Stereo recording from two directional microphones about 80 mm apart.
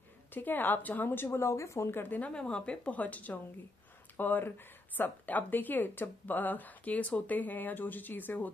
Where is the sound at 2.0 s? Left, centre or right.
Centre.